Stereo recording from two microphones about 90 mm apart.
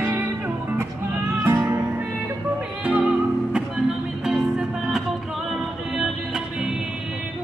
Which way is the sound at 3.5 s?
5° right (ahead or behind).